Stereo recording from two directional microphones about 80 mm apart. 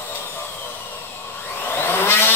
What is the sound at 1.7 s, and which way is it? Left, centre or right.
Vehicle, left.